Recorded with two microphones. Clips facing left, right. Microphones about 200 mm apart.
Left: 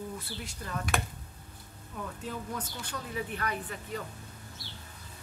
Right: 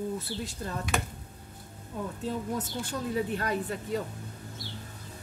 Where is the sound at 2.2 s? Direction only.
25° right (ahead or behind).